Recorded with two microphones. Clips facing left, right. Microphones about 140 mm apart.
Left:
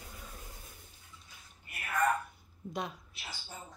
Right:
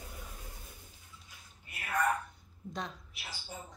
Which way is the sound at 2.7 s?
10° left (ahead or behind).